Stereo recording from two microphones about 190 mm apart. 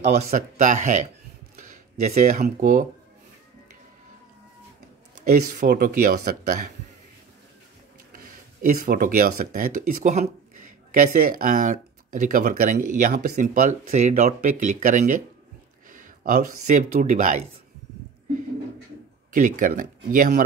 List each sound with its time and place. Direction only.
0.0 s speech: 35° right (ahead or behind)
1.7 s a sound: 40° right (ahead or behind)
2.4 s speech: 45° right (ahead or behind)
5.7 s speech: 50° right (ahead or behind)
8.6 s speech: 45° right (ahead or behind)
19.3 s speech: 45° right (ahead or behind)